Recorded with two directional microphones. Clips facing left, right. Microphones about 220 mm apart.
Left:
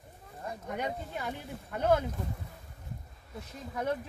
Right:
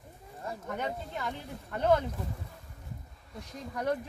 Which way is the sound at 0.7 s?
15° left (ahead or behind).